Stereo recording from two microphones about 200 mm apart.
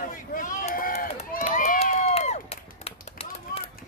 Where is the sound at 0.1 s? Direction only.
40° left (ahead or behind).